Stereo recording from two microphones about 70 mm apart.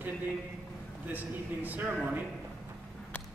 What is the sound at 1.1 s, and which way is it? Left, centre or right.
Speech, right.